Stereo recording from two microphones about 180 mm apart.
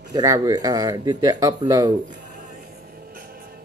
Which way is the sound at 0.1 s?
20° right (ahead or behind).